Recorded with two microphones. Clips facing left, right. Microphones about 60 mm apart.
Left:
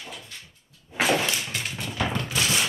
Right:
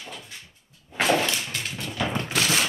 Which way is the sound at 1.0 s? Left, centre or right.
Centre.